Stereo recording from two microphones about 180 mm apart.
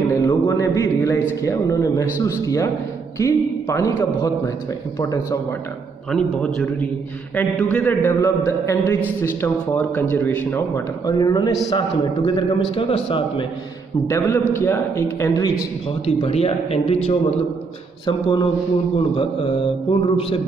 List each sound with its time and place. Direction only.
0.1 s a man's voice: 15° left (ahead or behind)
6.1 s a man's voice: 5° left (ahead or behind)
11.1 s speech: 25° left (ahead or behind)
14.0 s a man's voice: 15° left (ahead or behind)
16.1 s speech: 35° left (ahead or behind)